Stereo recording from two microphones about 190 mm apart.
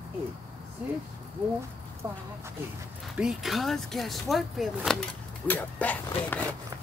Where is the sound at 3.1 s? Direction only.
5° right (ahead or behind).